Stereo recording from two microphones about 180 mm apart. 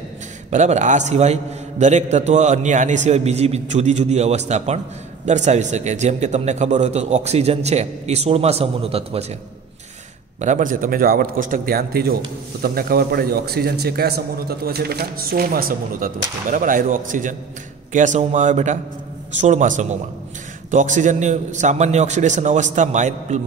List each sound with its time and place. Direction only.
0.5 s a man's voice: 40° right (ahead or behind)
10.4 s a man's voice: 45° right (ahead or behind)